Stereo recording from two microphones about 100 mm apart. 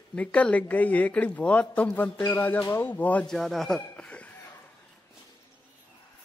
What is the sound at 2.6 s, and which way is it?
Speech, 30° left (ahead or behind).